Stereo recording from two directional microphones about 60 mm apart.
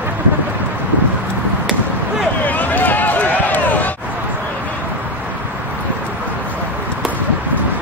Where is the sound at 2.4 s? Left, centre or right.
Left.